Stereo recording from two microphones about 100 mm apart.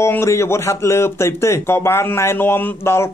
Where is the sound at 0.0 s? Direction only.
25° left (ahead or behind).